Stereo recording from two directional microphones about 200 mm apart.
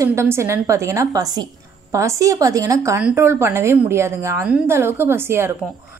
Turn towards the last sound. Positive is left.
turn(degrees=-10)  # may be behind; listen again after turning